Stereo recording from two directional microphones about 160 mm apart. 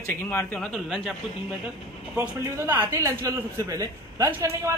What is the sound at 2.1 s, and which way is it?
A man's voice, 15° right (ahead or behind).